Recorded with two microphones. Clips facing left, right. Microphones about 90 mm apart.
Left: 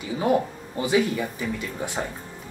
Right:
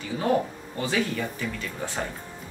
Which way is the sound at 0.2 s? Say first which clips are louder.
Left 2 dB; 15° left (ahead or behind).